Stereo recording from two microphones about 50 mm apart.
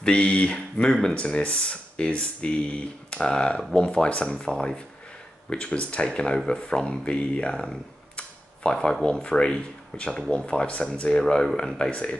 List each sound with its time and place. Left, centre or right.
0.0 s speech: left